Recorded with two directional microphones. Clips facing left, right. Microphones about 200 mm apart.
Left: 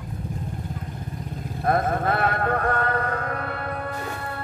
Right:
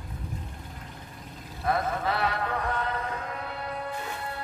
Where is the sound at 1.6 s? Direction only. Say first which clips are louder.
Left 5 dB; 50° left (ahead or behind).